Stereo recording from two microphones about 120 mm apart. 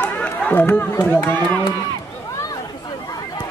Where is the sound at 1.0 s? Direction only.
15° left (ahead or behind).